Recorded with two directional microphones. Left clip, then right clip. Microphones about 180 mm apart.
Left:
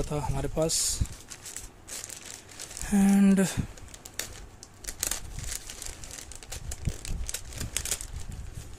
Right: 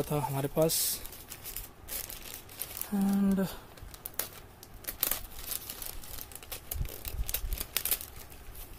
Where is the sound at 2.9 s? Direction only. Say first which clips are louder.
Left 7 dB; 35° left (ahead or behind).